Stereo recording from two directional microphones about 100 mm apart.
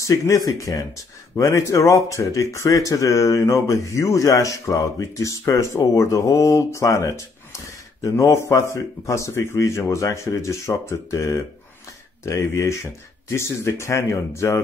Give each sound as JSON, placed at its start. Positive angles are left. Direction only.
{"t": 0.0, "sound": "speech", "side_deg": 30}